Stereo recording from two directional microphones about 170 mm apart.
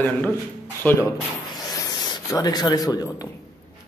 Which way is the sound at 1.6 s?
25° left (ahead or behind).